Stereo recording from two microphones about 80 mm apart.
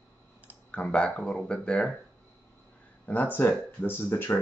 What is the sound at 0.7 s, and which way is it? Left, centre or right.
Speech, centre.